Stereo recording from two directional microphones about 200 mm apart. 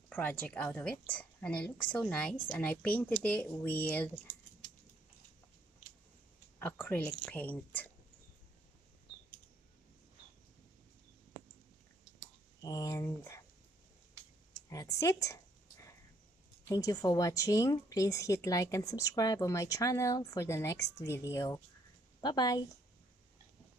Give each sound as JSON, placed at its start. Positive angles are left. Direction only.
{"t": 0.1, "sound": "speech", "side_deg": 10}
{"t": 6.6, "sound": "speech", "side_deg": 10}
{"t": 12.6, "sound": "speech", "side_deg": 15}
{"t": 14.7, "sound": "a sound", "side_deg": 15}
{"t": 16.6, "sound": "a woman's voice", "side_deg": 15}